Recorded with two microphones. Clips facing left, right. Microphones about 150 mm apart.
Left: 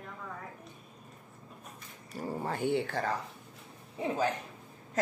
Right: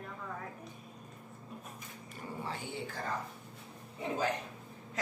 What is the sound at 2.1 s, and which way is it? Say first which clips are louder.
Speech: left 7 dB; 45° left (ahead or behind).